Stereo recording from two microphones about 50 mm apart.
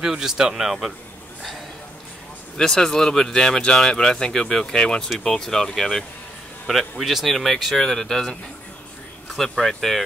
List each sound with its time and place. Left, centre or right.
0.0 s speech: centre
2.5 s speech: centre